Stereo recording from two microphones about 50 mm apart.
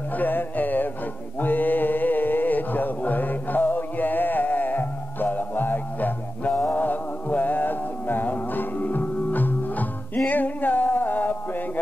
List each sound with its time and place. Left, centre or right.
0.2 s music: left
1.4 s mantra: left
6.7 s music: left